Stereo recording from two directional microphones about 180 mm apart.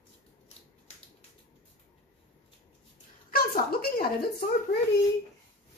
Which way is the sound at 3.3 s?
55° left (ahead or behind).